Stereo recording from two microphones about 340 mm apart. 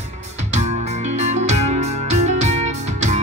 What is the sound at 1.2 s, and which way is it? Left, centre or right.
Music, centre.